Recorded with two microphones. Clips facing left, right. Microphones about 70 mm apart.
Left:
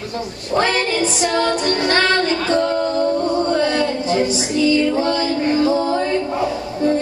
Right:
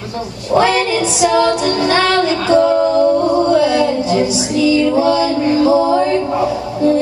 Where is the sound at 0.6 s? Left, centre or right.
Centre.